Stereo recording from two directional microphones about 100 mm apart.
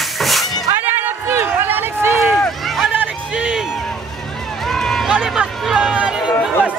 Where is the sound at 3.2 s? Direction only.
10° right (ahead or behind).